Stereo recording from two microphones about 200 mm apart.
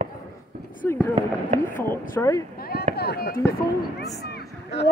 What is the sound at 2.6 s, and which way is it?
Chop, 50° left (ahead or behind).